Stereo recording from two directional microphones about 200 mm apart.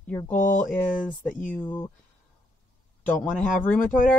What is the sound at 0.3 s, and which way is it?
Speech, 40° left (ahead or behind).